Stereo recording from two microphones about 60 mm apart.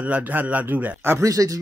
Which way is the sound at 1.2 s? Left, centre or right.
Right.